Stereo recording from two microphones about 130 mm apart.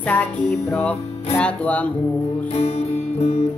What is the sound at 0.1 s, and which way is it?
Music, 10° left (ahead or behind).